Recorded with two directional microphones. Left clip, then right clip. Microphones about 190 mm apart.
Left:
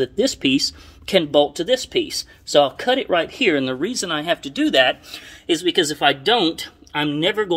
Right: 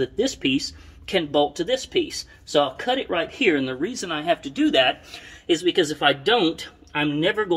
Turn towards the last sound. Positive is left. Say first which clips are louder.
# left 2 dB
turn(degrees=55)  # may be behind; listen again after turning